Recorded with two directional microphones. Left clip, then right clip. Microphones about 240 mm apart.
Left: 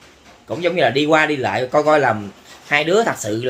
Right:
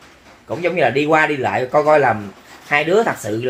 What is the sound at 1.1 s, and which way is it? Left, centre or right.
Speech, centre.